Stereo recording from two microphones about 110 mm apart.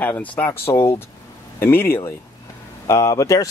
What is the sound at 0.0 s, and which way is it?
Speech, 15° left (ahead or behind).